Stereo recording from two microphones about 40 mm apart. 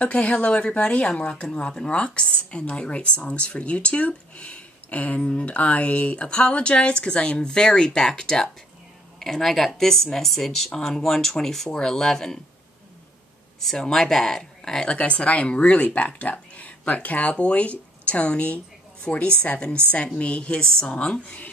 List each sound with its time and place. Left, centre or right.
0.0 s speech: left
13.7 s speech: centre
15.0 s speech: left